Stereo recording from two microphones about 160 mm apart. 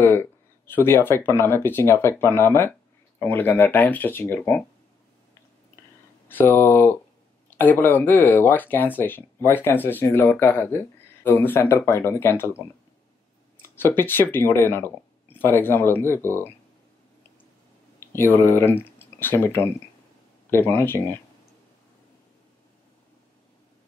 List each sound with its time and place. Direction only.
0.0 s speech: 15° left (ahead or behind)
6.2 s speech: 15° left (ahead or behind)
17.9 s speech: 15° left (ahead or behind)